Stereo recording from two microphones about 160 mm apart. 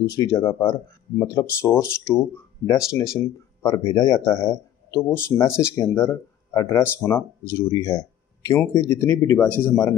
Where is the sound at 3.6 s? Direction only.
20° left (ahead or behind).